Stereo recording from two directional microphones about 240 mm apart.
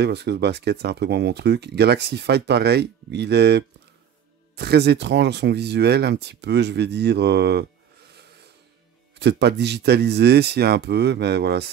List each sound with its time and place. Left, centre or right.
0.0 s speech: right
9.2 s speech: right